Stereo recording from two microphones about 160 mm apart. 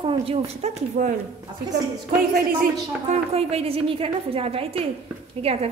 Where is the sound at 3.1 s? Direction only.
40° right (ahead or behind).